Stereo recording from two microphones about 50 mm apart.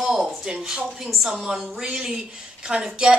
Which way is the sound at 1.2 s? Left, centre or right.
Centre.